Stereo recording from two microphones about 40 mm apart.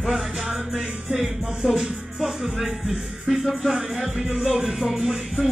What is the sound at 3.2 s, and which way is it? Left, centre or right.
Music, centre.